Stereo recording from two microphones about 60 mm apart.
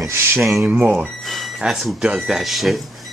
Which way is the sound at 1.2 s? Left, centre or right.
Centre.